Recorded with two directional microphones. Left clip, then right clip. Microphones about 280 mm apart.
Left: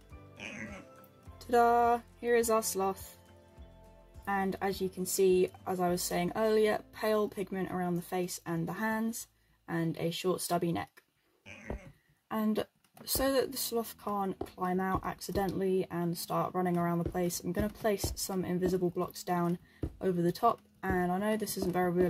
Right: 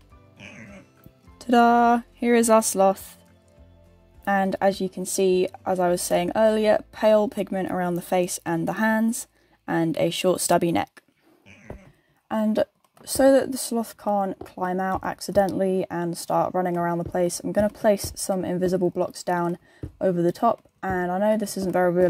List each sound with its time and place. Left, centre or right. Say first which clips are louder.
1.4 s speech: right 8 dB; right
4.2 s speech: right 11 dB; right
12.3 s speech: right 11 dB; right